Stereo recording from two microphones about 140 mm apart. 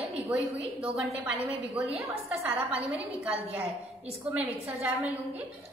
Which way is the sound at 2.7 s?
10° right (ahead or behind).